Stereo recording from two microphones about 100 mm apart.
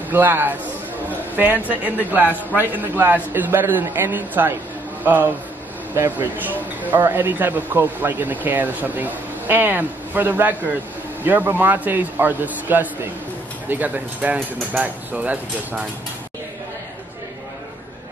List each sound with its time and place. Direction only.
0.1 s a man's voice: 20° right (ahead or behind)